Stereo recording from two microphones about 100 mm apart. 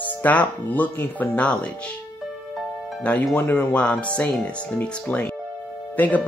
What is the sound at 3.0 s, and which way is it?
Speech, 15° left (ahead or behind).